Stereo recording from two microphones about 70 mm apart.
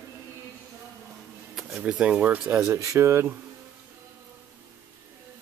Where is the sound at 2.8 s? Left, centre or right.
Right.